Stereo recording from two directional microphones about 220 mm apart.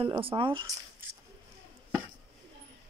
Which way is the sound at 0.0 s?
25° right (ahead or behind).